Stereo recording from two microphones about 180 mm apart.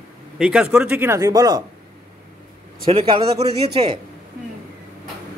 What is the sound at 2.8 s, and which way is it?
Speech, 30° right (ahead or behind).